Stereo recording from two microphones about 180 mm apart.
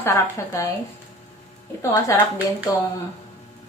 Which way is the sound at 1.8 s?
15° left (ahead or behind).